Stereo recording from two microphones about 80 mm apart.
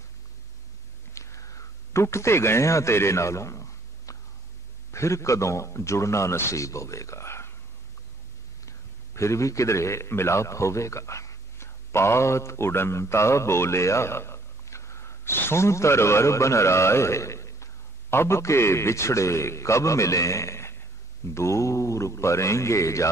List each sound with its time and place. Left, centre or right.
1.1 s a sound: left
4.9 s a man's voice: left
8.6 s a man's voice: left